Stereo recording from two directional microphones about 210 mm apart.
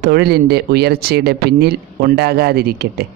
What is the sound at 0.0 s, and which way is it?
Speech, 50° right (ahead or behind).